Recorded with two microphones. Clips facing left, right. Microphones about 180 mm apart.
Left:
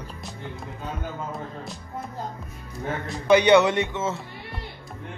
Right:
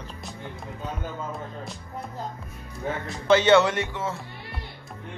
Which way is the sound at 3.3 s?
15° left (ahead or behind).